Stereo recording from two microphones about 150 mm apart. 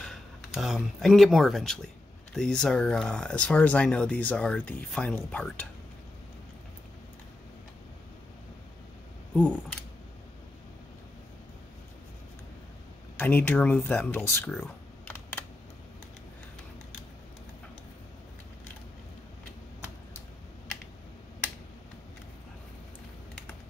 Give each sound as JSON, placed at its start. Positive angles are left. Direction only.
{"t": 0.0, "sound": "speech", "side_deg": 5}
{"t": 9.3, "sound": "speech", "side_deg": 5}
{"t": 13.2, "sound": "speech", "side_deg": 10}